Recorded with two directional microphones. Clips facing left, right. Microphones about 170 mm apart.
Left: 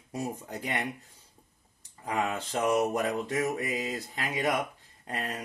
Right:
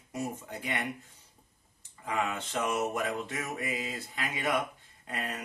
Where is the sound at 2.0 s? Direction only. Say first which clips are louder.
Left 2 dB; 35° left (ahead or behind).